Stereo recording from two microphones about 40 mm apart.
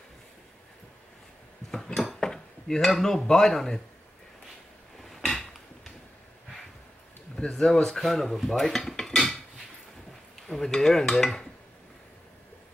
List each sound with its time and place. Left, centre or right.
1.7 s dishes: centre
2.9 s speech: centre
5.1 s drawer open or close: centre
7.3 s speech: centre
8.0 s speech: centre
8.6 s cutlery: centre
10.4 s stir: centre